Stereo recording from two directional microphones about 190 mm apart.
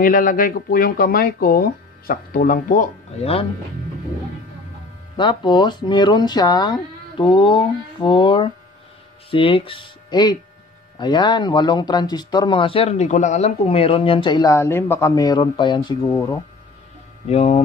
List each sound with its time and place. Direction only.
0.0 s speech: 45° left (ahead or behind)
5.1 s speech: 25° left (ahead or behind)
17.3 s speech: 35° left (ahead or behind)